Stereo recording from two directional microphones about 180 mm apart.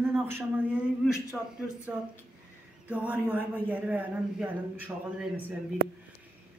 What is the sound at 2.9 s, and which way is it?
A man's voice, 10° right (ahead or behind).